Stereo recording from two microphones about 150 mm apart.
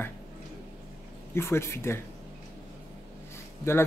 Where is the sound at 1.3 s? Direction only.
15° left (ahead or behind).